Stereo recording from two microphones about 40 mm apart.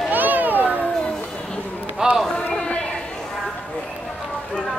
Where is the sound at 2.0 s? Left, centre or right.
Centre.